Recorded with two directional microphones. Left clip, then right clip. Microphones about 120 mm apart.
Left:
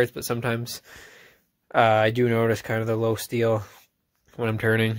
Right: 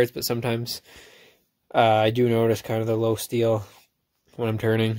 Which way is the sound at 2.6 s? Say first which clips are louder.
Right 1 dB; 15° right (ahead or behind).